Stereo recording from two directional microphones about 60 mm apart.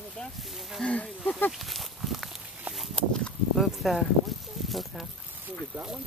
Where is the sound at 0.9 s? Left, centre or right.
Centre.